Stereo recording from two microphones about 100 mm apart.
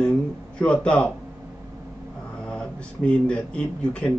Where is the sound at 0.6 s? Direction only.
10° left (ahead or behind).